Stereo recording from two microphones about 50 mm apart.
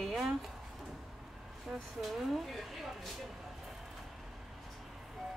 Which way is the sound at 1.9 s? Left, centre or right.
Centre.